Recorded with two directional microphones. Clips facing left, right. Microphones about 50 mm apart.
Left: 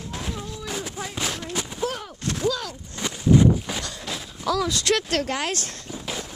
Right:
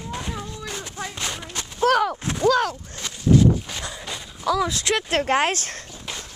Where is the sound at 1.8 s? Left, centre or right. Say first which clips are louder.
Right 13 dB; right.